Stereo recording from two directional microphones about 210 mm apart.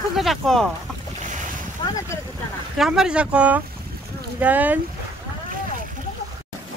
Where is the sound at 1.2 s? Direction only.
35° right (ahead or behind).